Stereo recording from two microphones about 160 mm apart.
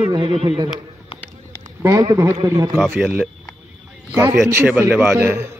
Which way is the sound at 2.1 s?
20° right (ahead or behind).